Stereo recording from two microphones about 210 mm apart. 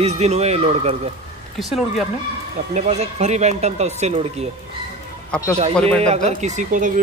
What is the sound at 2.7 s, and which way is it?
Speech, 35° right (ahead or behind).